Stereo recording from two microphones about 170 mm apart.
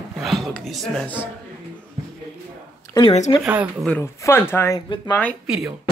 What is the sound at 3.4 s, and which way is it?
Speech, 10° right (ahead or behind).